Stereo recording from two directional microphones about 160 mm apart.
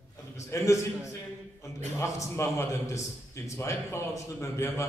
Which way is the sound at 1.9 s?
20° left (ahead or behind).